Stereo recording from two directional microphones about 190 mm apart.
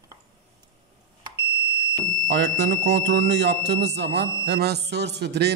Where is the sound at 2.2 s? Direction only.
65° right (ahead or behind).